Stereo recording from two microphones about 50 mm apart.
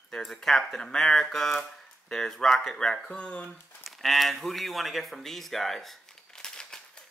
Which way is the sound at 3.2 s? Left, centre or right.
Left.